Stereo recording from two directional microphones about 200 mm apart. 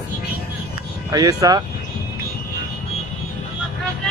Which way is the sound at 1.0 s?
20° right (ahead or behind).